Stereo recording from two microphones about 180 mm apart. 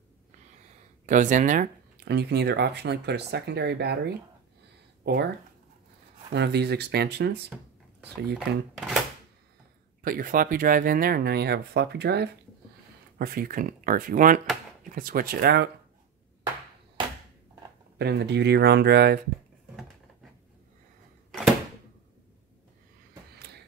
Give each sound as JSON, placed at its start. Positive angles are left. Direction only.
{"t": 1.0, "sound": "speech", "side_deg": -45}
{"t": 2.0, "sound": "speech", "side_deg": -65}
{"t": 6.3, "sound": "speech", "side_deg": -65}
{"t": 10.0, "sound": "speech", "side_deg": -50}
{"t": 13.2, "sound": "speech", "side_deg": -55}
{"t": 17.9, "sound": "speech", "side_deg": -65}